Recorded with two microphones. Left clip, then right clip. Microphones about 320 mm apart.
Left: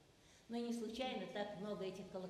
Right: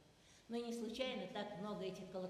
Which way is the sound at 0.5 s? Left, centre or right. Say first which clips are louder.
Even; right.